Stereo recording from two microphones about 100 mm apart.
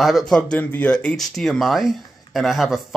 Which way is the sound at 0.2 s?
10° left (ahead or behind).